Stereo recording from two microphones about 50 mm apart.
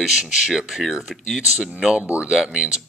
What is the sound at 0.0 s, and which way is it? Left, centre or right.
Speech, centre.